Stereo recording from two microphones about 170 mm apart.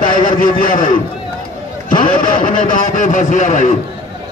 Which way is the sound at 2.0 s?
55° left (ahead or behind).